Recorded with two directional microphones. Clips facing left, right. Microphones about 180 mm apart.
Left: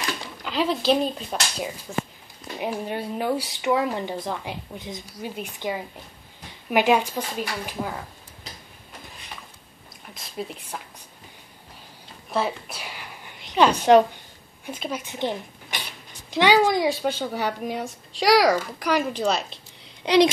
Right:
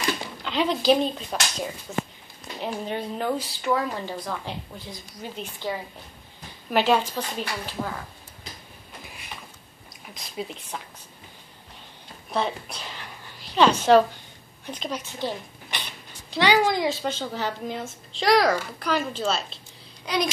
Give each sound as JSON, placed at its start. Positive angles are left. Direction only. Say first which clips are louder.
{"t": 0.4, "sound": "speech", "louder": "left 2 dB", "side_deg": 5}
{"t": 2.6, "sound": "speech", "louder": "left 1 dB", "side_deg": 10}
{"t": 3.6, "sound": "speech", "louder": "left 3 dB", "side_deg": 20}
{"t": 10.1, "sound": "speech", "louder": "left 1 dB", "side_deg": 0}
{"t": 12.3, "sound": "a sound", "louder": "left 1 dB", "side_deg": 5}
{"t": 14.7, "sound": "speech", "louder": "left 1 dB", "side_deg": 5}
{"t": 15.1, "sound": "a woman's voice", "louder": "left 3 dB", "side_deg": 20}